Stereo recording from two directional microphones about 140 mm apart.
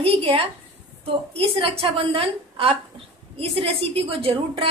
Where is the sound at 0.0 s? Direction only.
40° right (ahead or behind).